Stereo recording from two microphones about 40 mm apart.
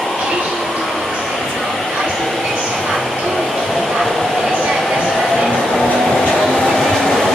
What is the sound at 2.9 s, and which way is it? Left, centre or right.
Music, centre.